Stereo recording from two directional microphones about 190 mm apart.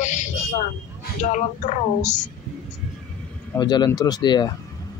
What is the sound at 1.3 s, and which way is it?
A woman's voice, 40° left (ahead or behind).